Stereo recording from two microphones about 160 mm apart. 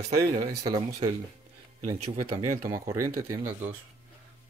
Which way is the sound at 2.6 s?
20° right (ahead or behind).